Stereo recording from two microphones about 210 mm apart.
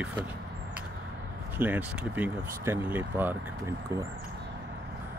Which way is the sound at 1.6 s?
5° right (ahead or behind).